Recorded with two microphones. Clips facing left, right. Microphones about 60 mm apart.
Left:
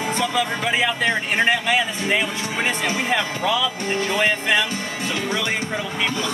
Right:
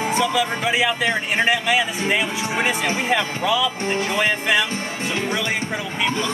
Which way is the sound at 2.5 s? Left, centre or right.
Right.